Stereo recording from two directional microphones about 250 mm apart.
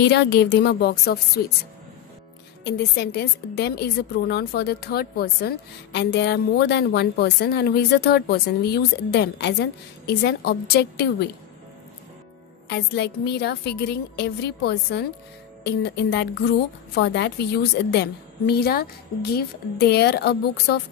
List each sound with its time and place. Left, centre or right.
0.0 s a woman's voice: left
2.6 s a woman's voice: left
12.6 s a woman's voice: left